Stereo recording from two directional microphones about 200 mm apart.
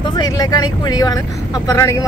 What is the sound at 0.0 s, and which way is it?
Speech, 20° left (ahead or behind).